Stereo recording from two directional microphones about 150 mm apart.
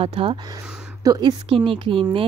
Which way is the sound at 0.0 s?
40° right (ahead or behind).